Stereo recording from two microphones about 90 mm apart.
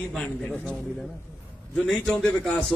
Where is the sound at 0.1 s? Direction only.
5° left (ahead or behind).